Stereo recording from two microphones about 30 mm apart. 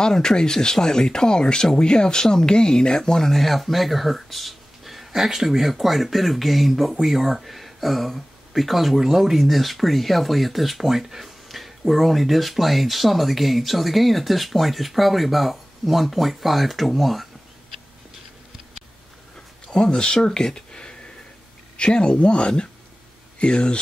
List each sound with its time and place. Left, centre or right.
0.0 s speech: left
3.0 s speech: centre
3.3 s speech: centre
11.4 s a sound: centre
11.9 s speech: centre
19.7 s speech: left
20.2 s a sound: centre
21.7 s speech: left